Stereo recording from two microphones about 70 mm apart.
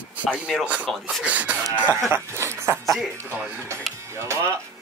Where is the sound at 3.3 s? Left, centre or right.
Right.